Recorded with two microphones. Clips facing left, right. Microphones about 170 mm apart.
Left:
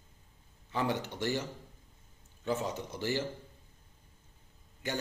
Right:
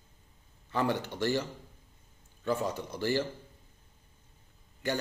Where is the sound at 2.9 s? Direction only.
20° left (ahead or behind).